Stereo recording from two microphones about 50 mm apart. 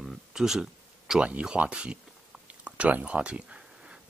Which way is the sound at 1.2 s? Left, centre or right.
Centre.